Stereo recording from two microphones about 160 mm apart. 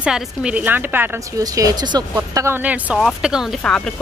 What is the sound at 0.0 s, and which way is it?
A woman's voice, 5° right (ahead or behind).